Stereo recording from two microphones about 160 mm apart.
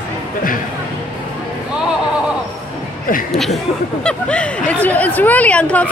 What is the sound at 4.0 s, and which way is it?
Speech, 5° left (ahead or behind).